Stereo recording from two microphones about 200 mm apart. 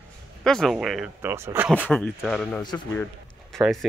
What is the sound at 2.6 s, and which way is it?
Speech, 20° left (ahead or behind).